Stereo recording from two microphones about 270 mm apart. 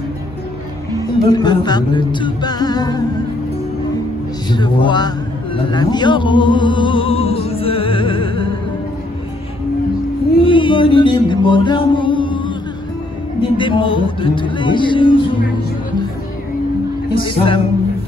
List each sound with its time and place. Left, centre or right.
0.9 s music: centre
4.5 s music: centre
5.7 s speech: centre
10.4 s music: centre
13.4 s speech: centre
17.4 s speech: left